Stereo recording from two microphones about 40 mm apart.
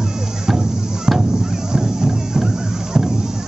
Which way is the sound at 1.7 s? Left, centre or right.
Centre.